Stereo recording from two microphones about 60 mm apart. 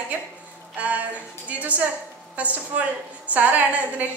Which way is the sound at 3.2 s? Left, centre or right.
Right.